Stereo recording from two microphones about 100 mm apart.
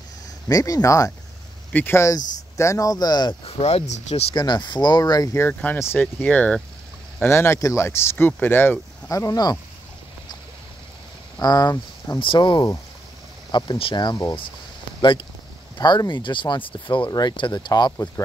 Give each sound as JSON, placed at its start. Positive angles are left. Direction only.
{"t": 0.5, "sound": "speech", "side_deg": 35}
{"t": 1.7, "sound": "speech", "side_deg": 20}
{"t": 2.0, "sound": "speech", "side_deg": 30}
{"t": 3.4, "sound": "speech", "side_deg": 75}
{"t": 4.4, "sound": "speech", "side_deg": 45}
{"t": 5.3, "sound": "speech", "side_deg": 25}
{"t": 7.2, "sound": "speech", "side_deg": 25}
{"t": 9.1, "sound": "speech", "side_deg": 35}
{"t": 11.3, "sound": "speech", "side_deg": 40}
{"t": 12.2, "sound": "speech", "side_deg": 55}
{"t": 13.7, "sound": "speech", "side_deg": 55}
{"t": 17.1, "sound": "speech", "side_deg": 45}